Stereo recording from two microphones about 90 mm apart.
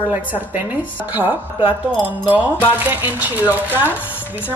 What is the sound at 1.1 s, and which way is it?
A woman's voice, 20° right (ahead or behind).